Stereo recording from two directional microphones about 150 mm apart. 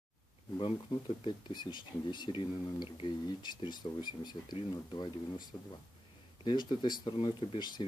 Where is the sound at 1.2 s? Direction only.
30° left (ahead or behind).